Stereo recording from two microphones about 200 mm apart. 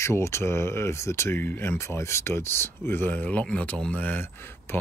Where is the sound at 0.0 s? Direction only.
15° left (ahead or behind).